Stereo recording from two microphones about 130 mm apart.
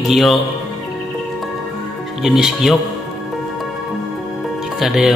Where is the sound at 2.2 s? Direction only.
5° right (ahead or behind).